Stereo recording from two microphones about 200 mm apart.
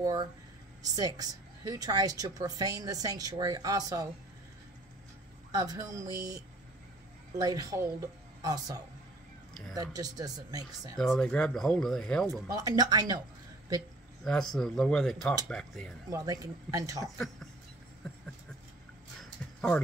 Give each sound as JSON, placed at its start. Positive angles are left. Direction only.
{"t": 0.0, "sound": "a woman's voice", "side_deg": -20}
{"t": 5.5, "sound": "a woman's voice", "side_deg": -15}
{"t": 9.5, "sound": "speech", "side_deg": 0}
{"t": 9.8, "sound": "a woman's voice", "side_deg": -20}
{"t": 11.0, "sound": "speech", "side_deg": 5}
{"t": 12.4, "sound": "a woman's voice", "side_deg": -15}
{"t": 14.2, "sound": "speech", "side_deg": 0}
{"t": 16.1, "sound": "a woman's voice", "side_deg": -15}
{"t": 17.0, "sound": "speech", "side_deg": 0}
{"t": 18.0, "sound": "a sound", "side_deg": 0}
{"t": 19.4, "sound": "a sound", "side_deg": 5}